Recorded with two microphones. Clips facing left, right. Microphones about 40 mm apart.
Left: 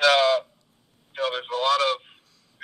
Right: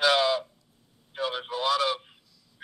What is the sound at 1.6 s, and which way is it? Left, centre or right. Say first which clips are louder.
Speech: left 4 dB; centre.